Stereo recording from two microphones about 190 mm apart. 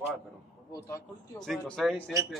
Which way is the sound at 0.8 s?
15° left (ahead or behind).